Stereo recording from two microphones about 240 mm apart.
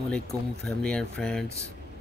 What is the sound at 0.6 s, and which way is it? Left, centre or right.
Speech, centre.